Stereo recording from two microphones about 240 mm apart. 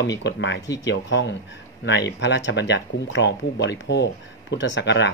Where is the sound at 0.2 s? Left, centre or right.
Left.